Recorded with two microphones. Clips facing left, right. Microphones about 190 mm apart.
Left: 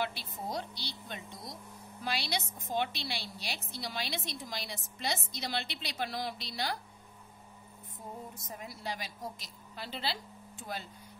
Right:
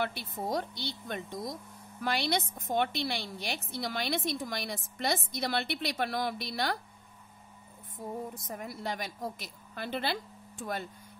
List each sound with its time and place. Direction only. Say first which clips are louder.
0.0 s a woman's voice: right 3 dB; 55° right (ahead or behind)
8.4 s a woman's voice: right 5 dB; 55° right (ahead or behind)